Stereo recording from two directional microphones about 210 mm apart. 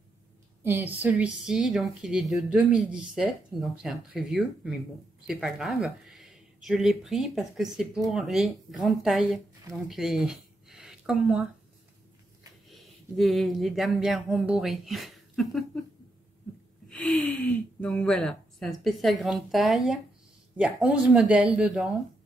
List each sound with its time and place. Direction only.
0.7 s a woman's voice: 10° right (ahead or behind)
12.6 s speech: centre (ahead or behind)
16.9 s speech: 5° left (ahead or behind)